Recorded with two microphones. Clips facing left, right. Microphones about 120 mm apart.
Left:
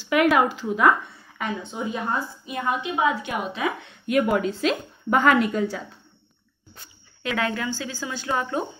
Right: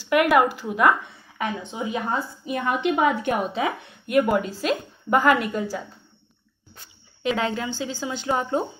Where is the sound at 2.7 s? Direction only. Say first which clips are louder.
Right 3 dB; 65° right (ahead or behind).